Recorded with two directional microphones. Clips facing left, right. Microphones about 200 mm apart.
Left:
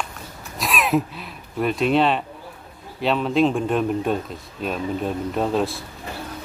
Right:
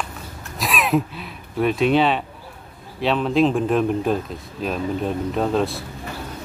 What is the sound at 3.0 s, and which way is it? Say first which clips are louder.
Speech: right 1 dB; centre (ahead or behind).